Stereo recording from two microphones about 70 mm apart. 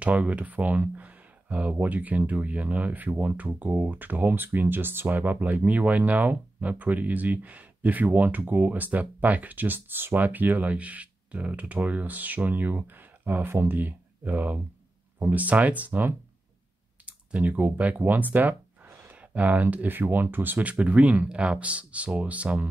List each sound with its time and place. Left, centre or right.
0.0 s speech: centre